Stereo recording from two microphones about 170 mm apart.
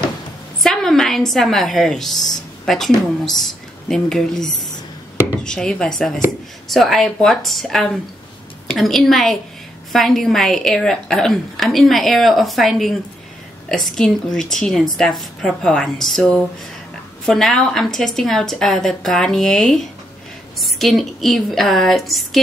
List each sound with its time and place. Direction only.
0.6 s a woman's voice: centre (ahead or behind)